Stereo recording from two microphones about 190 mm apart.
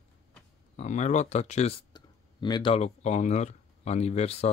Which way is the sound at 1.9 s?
20° left (ahead or behind).